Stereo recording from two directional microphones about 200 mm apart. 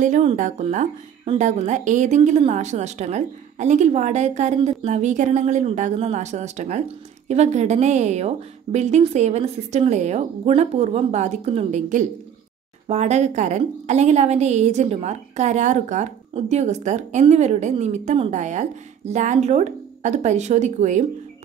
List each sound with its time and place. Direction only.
0.0 s a woman's voice: 40° right (ahead or behind)